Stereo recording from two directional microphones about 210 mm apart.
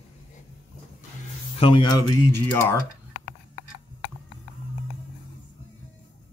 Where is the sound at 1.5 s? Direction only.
25° left (ahead or behind).